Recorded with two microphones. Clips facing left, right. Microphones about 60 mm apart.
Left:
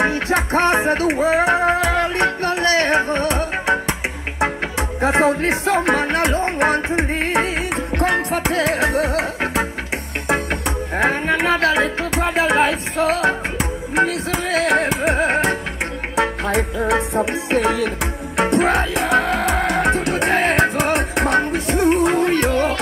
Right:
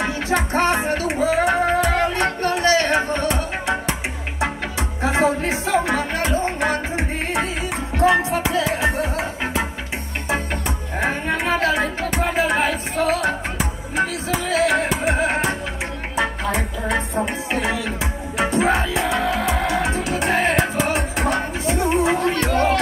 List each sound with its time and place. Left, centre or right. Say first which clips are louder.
0.0 s music: left 3 dB; left
11.0 s music: left 4 dB; left
16.2 s music: left 3 dB; left